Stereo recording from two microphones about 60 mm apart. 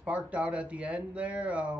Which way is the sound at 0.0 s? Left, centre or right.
Right.